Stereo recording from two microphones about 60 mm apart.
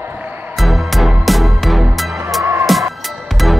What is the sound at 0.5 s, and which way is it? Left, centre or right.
Music, centre.